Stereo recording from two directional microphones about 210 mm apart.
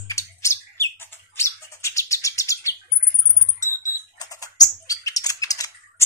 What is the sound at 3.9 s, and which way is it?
Typing, 15° left (ahead or behind).